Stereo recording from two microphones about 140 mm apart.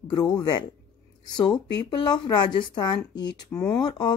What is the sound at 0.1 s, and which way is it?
Speech, 25° left (ahead or behind).